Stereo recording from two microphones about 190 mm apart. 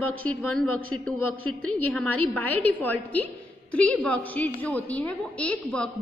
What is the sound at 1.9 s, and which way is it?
A woman's voice, 5° left (ahead or behind).